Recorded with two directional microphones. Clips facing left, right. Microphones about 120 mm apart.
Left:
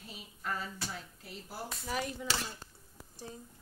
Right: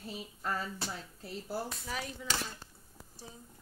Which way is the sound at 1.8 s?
5° left (ahead or behind).